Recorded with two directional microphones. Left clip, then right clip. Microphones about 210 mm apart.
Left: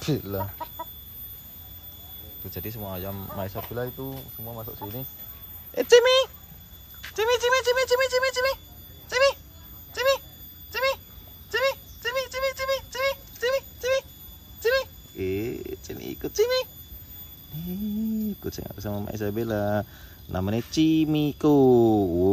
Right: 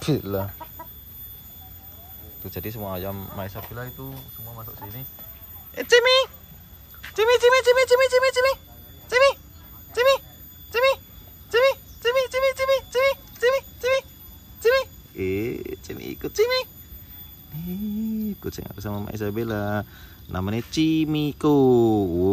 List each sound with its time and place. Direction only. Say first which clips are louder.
0.0 s speech: right 4 dB; 5° left (ahead or behind)
2.4 s speech: right 4 dB; 10° left (ahead or behind)
9.1 s a sound: right 4 dB; 5° left (ahead or behind)
18.4 s speech: right 1 dB; 10° left (ahead or behind)